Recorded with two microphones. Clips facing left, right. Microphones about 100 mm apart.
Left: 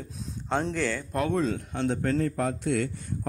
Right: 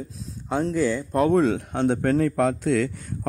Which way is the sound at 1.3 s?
60° right (ahead or behind).